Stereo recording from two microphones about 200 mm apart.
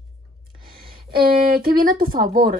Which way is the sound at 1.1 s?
50° right (ahead or behind).